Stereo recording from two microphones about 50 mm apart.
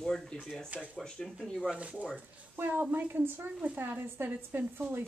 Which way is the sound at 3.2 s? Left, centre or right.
Right.